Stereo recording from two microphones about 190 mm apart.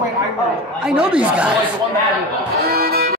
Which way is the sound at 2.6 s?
55° right (ahead or behind).